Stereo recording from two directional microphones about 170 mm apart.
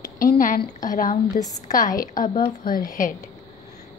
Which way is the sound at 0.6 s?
20° left (ahead or behind).